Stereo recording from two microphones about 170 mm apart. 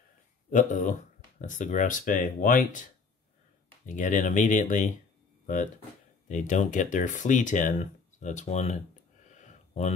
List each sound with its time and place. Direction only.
0.5 s speech: 45° left (ahead or behind)
6.2 s speech: 45° left (ahead or behind)
9.3 s a sound: 45° left (ahead or behind)